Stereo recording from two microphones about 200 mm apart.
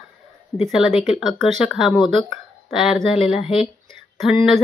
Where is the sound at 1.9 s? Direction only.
25° left (ahead or behind).